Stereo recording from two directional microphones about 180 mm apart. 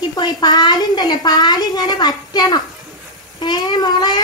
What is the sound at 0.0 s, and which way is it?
A woman's voice, 20° left (ahead or behind).